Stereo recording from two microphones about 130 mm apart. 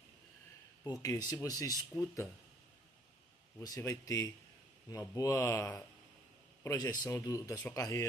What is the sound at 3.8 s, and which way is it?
Speech, 25° left (ahead or behind).